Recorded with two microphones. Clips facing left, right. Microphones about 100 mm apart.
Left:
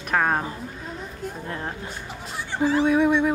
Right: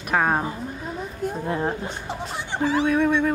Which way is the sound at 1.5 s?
20° right (ahead or behind).